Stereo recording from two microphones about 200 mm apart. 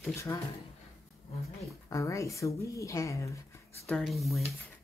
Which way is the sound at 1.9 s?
15° left (ahead or behind).